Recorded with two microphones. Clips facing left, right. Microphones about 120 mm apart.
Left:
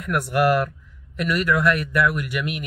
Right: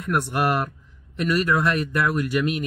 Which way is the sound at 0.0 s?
25° right (ahead or behind).